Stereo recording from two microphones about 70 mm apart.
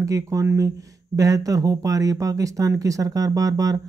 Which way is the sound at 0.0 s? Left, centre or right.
Right.